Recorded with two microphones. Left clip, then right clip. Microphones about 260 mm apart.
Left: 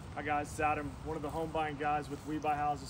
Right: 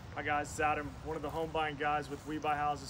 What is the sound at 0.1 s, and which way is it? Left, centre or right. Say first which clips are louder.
Speech: right 1 dB; centre.